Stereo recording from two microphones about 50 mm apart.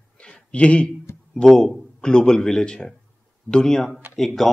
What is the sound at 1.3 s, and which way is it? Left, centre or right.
Speech, centre.